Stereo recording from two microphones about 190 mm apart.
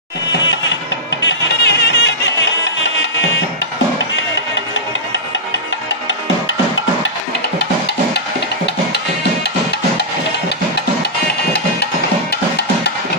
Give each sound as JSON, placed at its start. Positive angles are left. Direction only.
{"t": 1.2, "sound": "music", "side_deg": 65}
{"t": 7.5, "sound": "music", "side_deg": 60}